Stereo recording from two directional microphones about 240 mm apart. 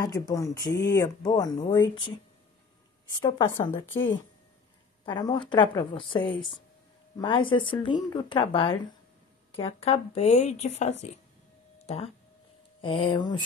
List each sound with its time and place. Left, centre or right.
0.0 s speech: centre
3.2 s speech: centre
5.0 s speech: centre
11.8 s a sound: left
12.8 s speech: left